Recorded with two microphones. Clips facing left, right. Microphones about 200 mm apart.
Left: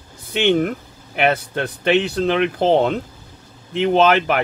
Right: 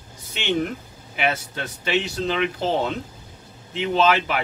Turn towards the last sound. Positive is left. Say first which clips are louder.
# left 5 dB
turn(degrees=55)  # may be behind; listen again after turning